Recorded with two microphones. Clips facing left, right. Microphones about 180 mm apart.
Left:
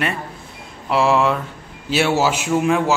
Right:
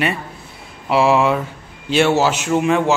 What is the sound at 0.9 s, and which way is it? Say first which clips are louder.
A man's voice: right 2 dB; centre (ahead or behind).